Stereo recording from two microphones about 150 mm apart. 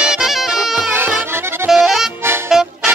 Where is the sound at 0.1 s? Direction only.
Centre (ahead or behind).